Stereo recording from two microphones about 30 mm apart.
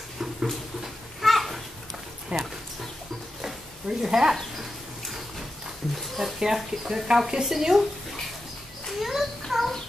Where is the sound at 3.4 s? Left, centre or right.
Centre.